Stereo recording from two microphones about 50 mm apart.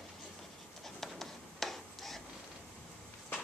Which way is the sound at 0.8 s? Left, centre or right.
Centre.